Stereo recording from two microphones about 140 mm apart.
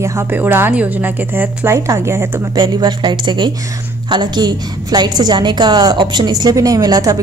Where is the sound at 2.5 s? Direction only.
35° right (ahead or behind).